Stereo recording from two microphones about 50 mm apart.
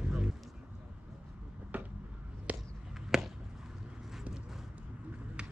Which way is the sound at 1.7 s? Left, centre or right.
Right.